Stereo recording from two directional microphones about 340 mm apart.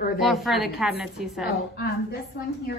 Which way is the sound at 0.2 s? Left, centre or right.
Centre.